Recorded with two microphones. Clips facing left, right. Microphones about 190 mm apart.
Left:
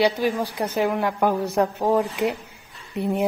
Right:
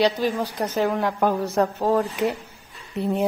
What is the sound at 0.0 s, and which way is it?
A man's voice, 10° left (ahead or behind).